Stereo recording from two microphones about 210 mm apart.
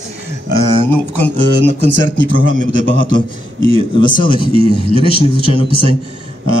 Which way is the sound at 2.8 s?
70° right (ahead or behind).